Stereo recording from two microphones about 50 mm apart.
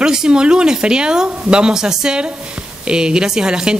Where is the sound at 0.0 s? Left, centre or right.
Centre.